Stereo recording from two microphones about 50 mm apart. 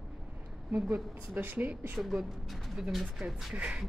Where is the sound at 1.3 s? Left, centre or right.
Right.